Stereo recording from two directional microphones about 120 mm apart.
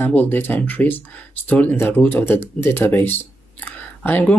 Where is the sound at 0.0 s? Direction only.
15° left (ahead or behind).